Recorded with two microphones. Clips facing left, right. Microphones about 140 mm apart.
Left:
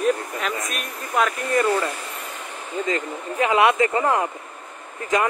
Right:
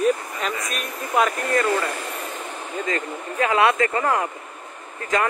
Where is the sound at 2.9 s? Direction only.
20° left (ahead or behind).